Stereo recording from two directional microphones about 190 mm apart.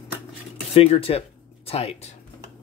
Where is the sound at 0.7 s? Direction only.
30° left (ahead or behind).